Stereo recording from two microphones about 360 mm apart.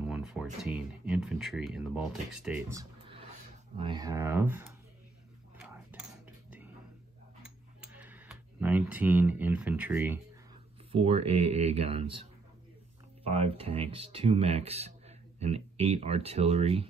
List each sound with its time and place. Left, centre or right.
0.0 s speech: centre
2.4 s a sound: centre
3.7 s speech: centre
5.6 s cutlery: centre
7.4 s tick-tock: centre
10.9 s speech: centre
13.2 s speech: centre